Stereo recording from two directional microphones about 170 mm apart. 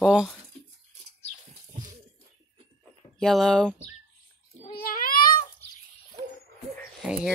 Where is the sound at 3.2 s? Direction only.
Centre (ahead or behind).